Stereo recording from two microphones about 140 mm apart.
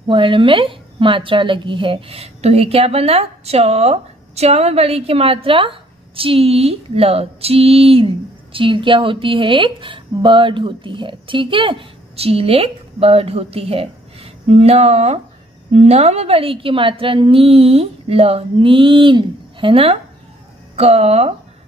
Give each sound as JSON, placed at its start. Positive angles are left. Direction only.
{"t": 0.1, "sound": "a woman's voice", "side_deg": -40}